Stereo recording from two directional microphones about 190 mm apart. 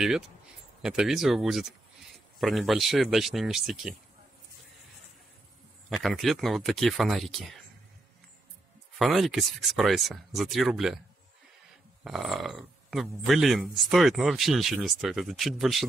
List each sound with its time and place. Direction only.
0.8 s speech: centre (ahead or behind)
5.9 s speech: centre (ahead or behind)
8.9 s speech: centre (ahead or behind)
12.0 s speech: centre (ahead or behind)